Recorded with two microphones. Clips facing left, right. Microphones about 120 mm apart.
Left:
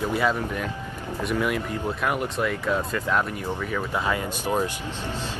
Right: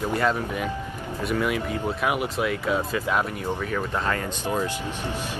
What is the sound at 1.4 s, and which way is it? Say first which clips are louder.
Speech: right 1 dB; centre (ahead or behind).